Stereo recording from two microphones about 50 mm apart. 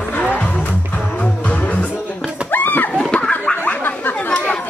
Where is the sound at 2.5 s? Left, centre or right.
Left.